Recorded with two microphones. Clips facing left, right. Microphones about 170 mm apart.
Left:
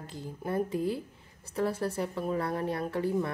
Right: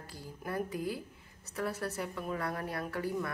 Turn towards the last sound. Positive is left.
turn(degrees=25)  # may be behind; listen again after turning